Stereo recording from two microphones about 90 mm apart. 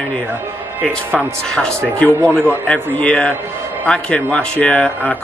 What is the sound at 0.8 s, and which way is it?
Speech, 10° left (ahead or behind).